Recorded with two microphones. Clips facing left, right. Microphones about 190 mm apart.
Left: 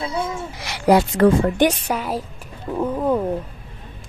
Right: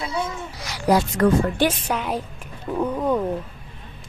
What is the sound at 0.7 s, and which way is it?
Speech, 25° left (ahead or behind).